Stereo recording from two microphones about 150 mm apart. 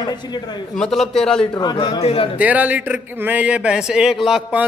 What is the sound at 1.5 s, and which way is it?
Speech, 30° left (ahead or behind).